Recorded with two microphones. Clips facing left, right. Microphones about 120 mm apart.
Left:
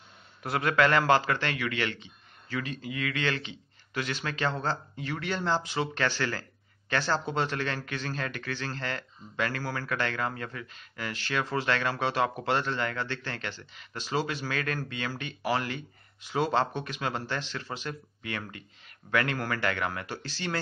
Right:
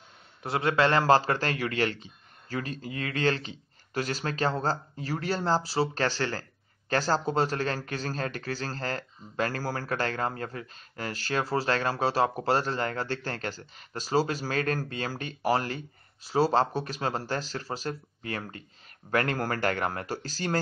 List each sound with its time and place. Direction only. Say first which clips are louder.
0.4 s speech: even; 25° right (ahead or behind); by 20.5 s 40° right (ahead or behind)